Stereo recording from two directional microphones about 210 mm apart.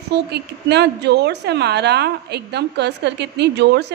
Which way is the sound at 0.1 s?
50° right (ahead or behind).